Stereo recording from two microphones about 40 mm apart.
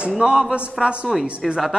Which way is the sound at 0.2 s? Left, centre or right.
Right.